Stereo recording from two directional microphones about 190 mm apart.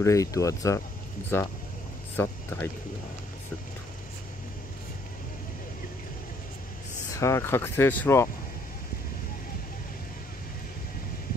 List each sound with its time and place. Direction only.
0.0 s speech: 15° left (ahead or behind)
2.1 s speech: 10° left (ahead or behind)
7.2 s speech: 15° left (ahead or behind)